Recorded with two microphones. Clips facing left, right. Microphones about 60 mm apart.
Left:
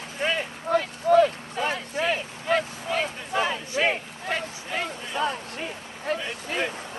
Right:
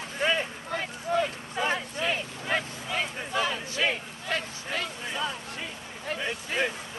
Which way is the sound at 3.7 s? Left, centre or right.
Left.